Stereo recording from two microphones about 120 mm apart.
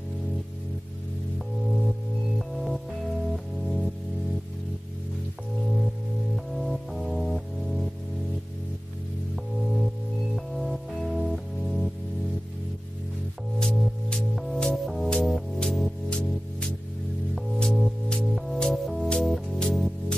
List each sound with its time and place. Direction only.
1.8 s music: centre (ahead or behind)
6.3 s music: centre (ahead or behind)
9.3 s music: centre (ahead or behind)
13.6 s music: 5° left (ahead or behind)